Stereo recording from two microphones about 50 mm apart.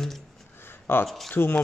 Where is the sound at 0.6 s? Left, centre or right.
Left.